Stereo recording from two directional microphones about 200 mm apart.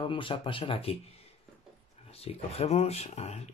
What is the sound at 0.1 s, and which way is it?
Speech, 25° left (ahead or behind).